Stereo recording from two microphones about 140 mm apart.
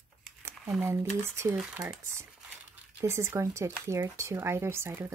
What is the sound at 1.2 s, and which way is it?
Speech, 20° right (ahead or behind).